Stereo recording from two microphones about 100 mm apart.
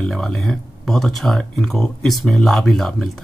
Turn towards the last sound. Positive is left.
turn(degrees=0)  # may be behind; listen again after turning